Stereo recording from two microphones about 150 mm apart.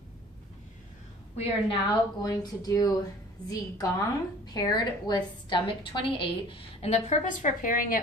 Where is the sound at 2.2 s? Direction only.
25° left (ahead or behind).